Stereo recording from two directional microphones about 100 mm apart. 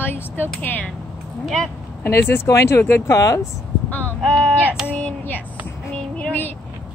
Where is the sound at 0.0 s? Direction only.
20° left (ahead or behind).